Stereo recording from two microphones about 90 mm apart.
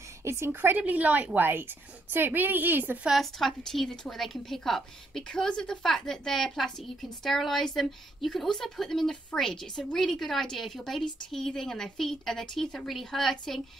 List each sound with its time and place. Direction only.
0.2 s a woman's voice: 30° right (ahead or behind)
3.1 s a woman's voice: centre (ahead or behind)